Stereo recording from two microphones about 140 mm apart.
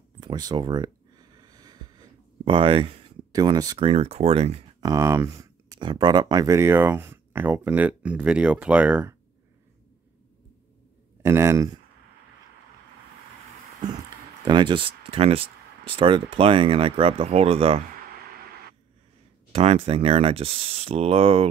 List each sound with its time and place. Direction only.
0.2 s a sound: 30° right (ahead or behind)
3.8 s speech: 45° right (ahead or behind)
4.7 s speech: 25° right (ahead or behind)
11.2 s speech: 20° right (ahead or behind)
14.4 s speech: 35° right (ahead or behind)
19.5 s speech: 45° right (ahead or behind)